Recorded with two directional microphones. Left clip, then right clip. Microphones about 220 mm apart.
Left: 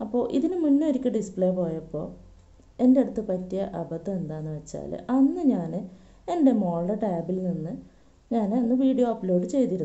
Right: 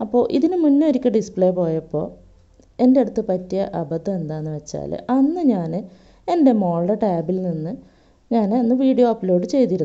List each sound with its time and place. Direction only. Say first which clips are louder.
0.0 s a woman's voice: right 8 dB; 35° right (ahead or behind)